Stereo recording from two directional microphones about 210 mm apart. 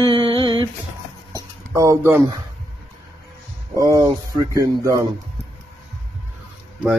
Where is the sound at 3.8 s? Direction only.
15° right (ahead or behind).